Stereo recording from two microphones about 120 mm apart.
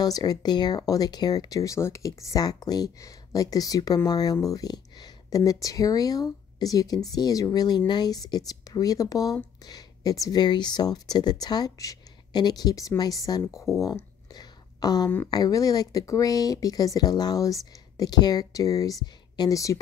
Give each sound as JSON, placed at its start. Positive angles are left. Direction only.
{"t": 0.0, "sound": "speech", "side_deg": 30}
{"t": 13.7, "sound": "a sound", "side_deg": 25}
{"t": 15.2, "sound": "speech", "side_deg": 30}